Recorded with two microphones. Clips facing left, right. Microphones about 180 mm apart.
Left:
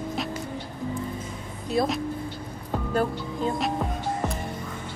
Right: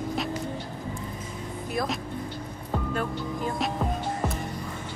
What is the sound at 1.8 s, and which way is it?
Speech, 25° left (ahead or behind).